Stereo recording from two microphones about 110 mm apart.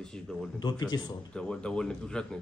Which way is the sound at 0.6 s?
40° left (ahead or behind).